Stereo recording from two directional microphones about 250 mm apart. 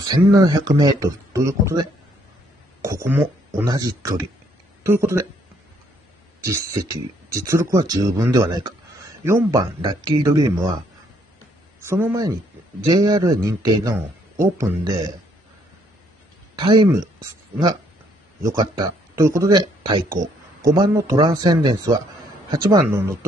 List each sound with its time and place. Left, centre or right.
0.0 s speech: centre
6.4 s speech: centre
11.8 s speech: centre
16.5 s speech: centre